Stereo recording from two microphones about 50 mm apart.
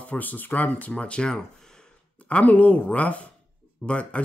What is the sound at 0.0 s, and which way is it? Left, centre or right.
Speech, left.